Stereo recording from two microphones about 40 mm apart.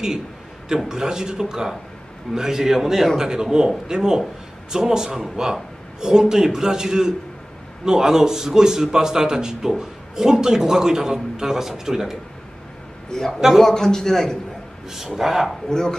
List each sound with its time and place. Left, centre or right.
0.8 s a man's voice: centre
13.3 s a man's voice: centre
13.7 s a man's voice: centre
15.1 s speech: centre
15.7 s a man's voice: centre